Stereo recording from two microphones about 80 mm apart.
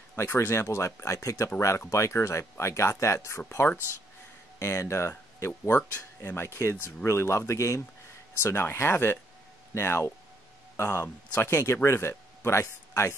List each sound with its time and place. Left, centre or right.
0.1 s speech: left
5.8 s speech: centre
6.3 s speech: left